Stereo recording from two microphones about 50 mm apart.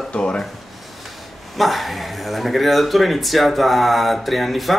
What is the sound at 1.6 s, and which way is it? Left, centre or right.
Speech, centre.